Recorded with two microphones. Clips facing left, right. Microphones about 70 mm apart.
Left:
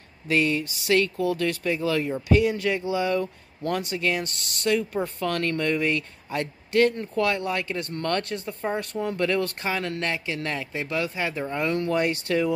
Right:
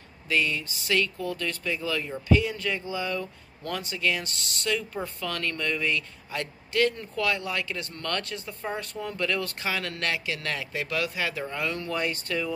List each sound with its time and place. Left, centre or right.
0.3 s a woman's voice: left
1.6 s a woman's voice: left
9.7 s speech: left
11.7 s a woman's voice: left